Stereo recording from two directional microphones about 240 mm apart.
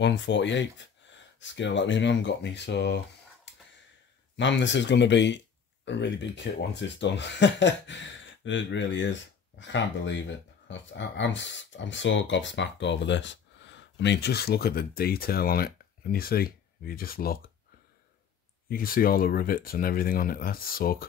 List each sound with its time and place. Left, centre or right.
0.0 s speech: left
3.5 s a sound: left
4.4 s speech: left
18.7 s speech: left